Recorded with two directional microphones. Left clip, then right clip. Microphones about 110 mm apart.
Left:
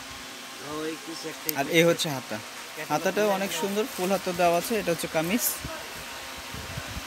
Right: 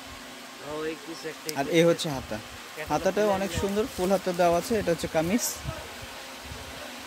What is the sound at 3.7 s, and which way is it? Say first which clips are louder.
Speech: right 3 dB; 20° right (ahead or behind).